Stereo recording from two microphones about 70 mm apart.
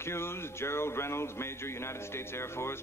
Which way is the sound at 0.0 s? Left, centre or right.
Left.